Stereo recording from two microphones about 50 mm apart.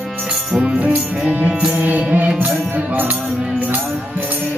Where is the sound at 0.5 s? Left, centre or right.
Centre.